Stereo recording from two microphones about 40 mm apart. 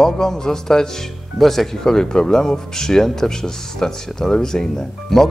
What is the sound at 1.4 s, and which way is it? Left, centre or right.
Speech, centre.